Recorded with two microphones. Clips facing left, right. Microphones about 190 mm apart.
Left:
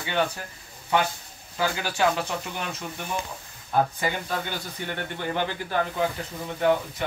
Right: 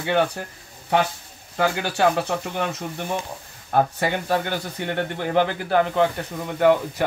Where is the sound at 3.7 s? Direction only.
60° right (ahead or behind).